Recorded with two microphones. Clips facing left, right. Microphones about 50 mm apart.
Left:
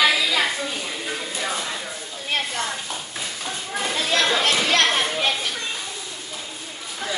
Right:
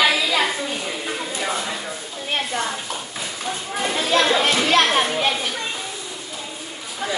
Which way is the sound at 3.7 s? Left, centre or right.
Centre.